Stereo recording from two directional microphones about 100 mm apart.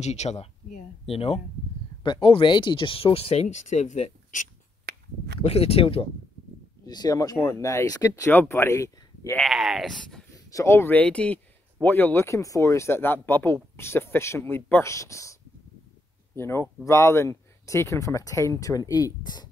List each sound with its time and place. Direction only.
0.0 s speech: 90° left
1.0 s speech: 75° left (ahead or behind)
2.0 s speech: 55° left (ahead or behind); by 4.1 s 90° left
5.4 s speech: 80° left
6.9 s speech: 40° left (ahead or behind)
8.3 s speech: 25° left (ahead or behind)
9.4 s speech: 5° right (ahead or behind)
10.5 s speech: 30° left (ahead or behind)
11.0 s speech: 15° left (ahead or behind); by 15.3 s 30° left (ahead or behind)
16.3 s speech: 25° left (ahead or behind); by 19.5 s 45° left (ahead or behind)